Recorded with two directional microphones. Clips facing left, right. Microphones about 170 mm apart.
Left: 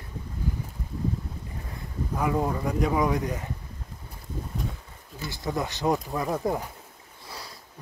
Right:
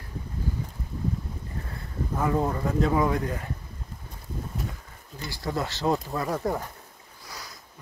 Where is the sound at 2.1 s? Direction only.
10° left (ahead or behind).